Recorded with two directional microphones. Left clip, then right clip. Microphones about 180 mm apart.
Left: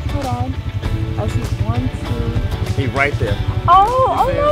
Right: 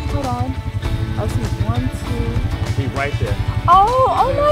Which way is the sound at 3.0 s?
60° left (ahead or behind).